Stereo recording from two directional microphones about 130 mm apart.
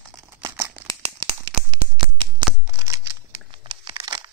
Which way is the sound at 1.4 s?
40° right (ahead or behind).